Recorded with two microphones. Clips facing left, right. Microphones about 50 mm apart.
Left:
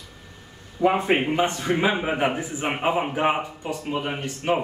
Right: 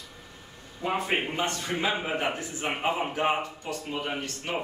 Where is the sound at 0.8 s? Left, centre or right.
Left.